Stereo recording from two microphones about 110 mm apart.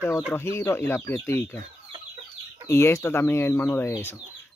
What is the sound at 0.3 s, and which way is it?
Speech, 20° left (ahead or behind).